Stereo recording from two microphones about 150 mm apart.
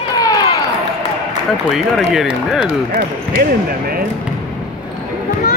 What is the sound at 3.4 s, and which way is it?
Speech, 75° right (ahead or behind).